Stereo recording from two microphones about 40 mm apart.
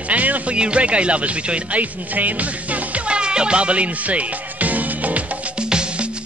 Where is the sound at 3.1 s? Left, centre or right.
Right.